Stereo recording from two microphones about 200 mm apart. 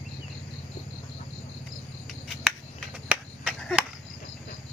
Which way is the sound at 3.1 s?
5° right (ahead or behind).